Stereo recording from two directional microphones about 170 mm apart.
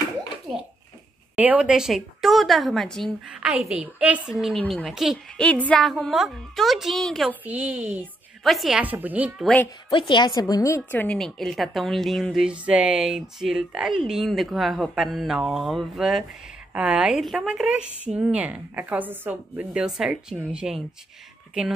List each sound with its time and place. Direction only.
1.3 s a woman's voice: 10° right (ahead or behind)
7.4 s speech: 10° right (ahead or behind)
9.8 s a woman's voice: 30° left (ahead or behind)
10.9 s a woman's voice: 10° left (ahead or behind)